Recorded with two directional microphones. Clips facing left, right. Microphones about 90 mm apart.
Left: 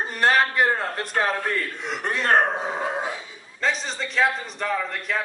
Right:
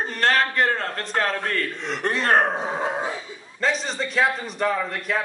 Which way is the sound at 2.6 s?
30° right (ahead or behind).